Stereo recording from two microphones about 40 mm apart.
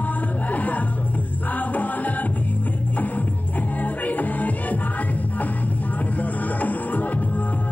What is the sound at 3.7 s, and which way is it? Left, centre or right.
Music, left.